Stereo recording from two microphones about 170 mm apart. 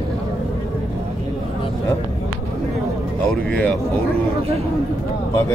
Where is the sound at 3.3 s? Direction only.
5° left (ahead or behind).